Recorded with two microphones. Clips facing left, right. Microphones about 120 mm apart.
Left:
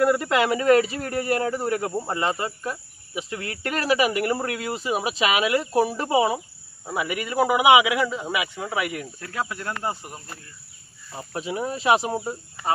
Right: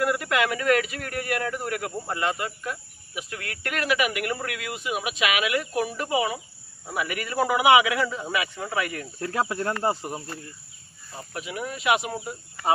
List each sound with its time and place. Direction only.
0.0 s speech: 25° left (ahead or behind)
9.2 s speech: 30° right (ahead or behind)
11.1 s speech: 30° left (ahead or behind)